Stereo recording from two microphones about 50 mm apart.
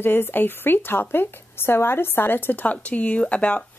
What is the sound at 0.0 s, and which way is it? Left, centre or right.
Speech, left.